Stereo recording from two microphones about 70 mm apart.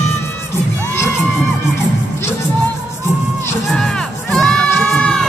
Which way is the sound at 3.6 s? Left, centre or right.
Centre.